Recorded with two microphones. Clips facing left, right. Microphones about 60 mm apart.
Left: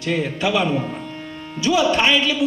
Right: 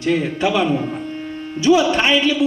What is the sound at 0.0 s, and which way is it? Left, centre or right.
Speech, right.